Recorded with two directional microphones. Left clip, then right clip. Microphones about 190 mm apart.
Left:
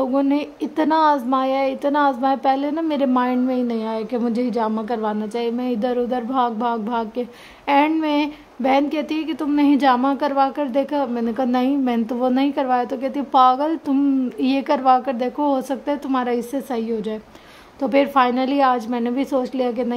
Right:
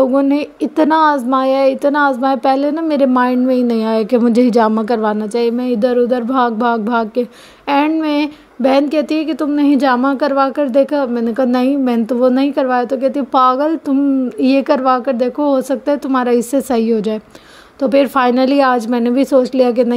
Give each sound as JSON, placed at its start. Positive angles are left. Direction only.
{"t": 0.0, "sound": "a woman's voice", "side_deg": -25}